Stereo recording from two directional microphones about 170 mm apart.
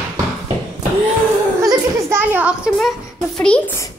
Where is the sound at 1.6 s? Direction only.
20° right (ahead or behind).